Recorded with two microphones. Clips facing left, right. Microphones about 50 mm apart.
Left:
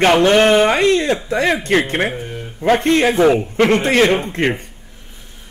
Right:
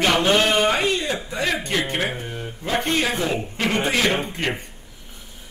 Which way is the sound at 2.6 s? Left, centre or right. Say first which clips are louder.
Left 9 dB; left.